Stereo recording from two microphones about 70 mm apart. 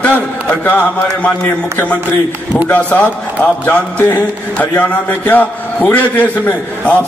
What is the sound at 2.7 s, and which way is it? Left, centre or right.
A man's voice, centre.